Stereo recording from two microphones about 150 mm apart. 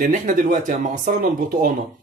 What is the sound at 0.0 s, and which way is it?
Speech, 60° right (ahead or behind).